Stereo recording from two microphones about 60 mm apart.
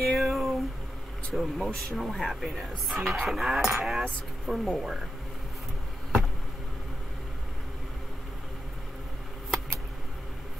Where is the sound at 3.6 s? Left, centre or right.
Centre.